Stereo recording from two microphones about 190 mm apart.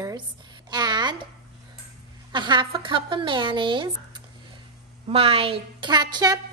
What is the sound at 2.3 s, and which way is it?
A woman's voice, 25° right (ahead or behind).